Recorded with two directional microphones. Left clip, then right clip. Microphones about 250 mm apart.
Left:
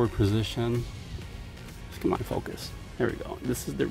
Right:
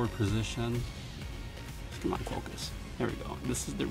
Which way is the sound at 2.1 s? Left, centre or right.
Left.